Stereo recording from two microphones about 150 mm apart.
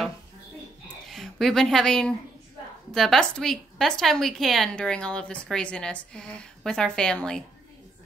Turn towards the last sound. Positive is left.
turn(degrees=5)  # may be behind; listen again after turning